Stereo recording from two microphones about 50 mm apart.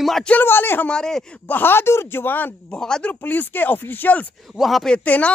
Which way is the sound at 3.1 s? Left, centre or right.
Left.